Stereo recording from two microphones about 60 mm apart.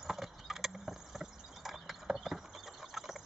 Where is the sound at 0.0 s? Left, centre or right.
Centre.